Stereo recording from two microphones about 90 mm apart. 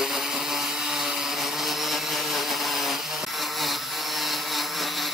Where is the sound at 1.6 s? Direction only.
Centre (ahead or behind).